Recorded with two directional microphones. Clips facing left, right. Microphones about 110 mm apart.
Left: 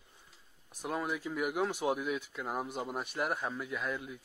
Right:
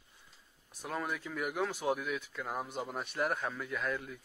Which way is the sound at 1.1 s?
15° left (ahead or behind).